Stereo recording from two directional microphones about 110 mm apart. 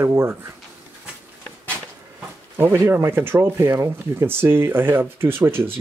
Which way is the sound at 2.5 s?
20° right (ahead or behind).